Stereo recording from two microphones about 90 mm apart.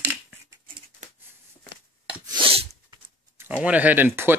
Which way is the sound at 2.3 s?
85° right.